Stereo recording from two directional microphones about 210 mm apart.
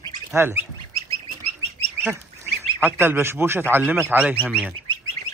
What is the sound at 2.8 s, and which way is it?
Speech, 10° right (ahead or behind).